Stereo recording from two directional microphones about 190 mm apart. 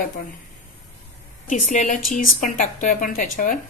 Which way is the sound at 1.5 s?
40° left (ahead or behind).